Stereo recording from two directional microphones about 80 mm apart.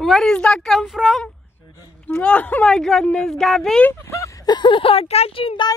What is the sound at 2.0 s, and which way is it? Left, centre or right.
A woman's voice, centre.